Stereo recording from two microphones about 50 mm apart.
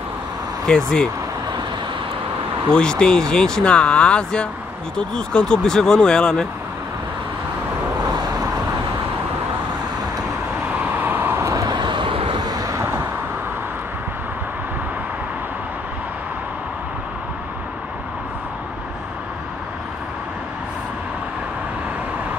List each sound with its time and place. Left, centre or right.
0.7 s speech: centre
2.7 s speech: centre
11.0 s vehicle: right
12.7 s vehicle: right